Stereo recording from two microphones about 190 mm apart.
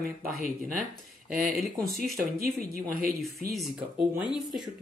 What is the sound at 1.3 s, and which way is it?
Speech, 45° right (ahead or behind).